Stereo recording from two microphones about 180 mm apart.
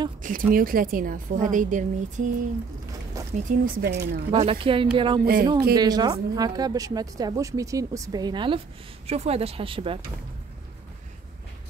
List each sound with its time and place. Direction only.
0.2 s a woman's voice: 50° right (ahead or behind)
3.3 s speech: 50° right (ahead or behind)
4.3 s a woman's voice: 30° right (ahead or behind)
5.2 s speech: 55° right (ahead or behind)
5.8 s a woman's voice: 20° right (ahead or behind)
9.0 s speech: 35° right (ahead or behind)